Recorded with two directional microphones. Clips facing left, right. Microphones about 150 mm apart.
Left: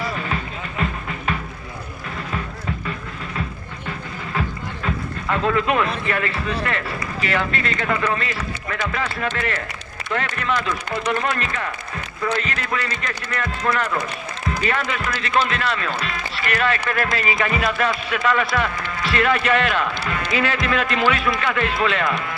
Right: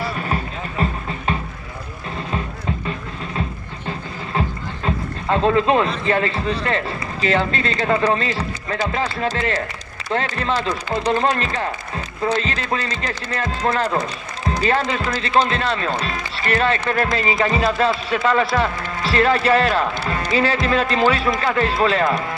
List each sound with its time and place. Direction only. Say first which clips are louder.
0.0 s music: right 2 dB; 30° right (ahead or behind)
4.3 s rowboat: right 2 dB; 30° right (ahead or behind)
6.0 s speech: right 4 dB; 30° right (ahead or behind)